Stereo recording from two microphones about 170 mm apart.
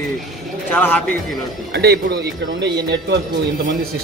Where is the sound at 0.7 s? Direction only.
10° left (ahead or behind).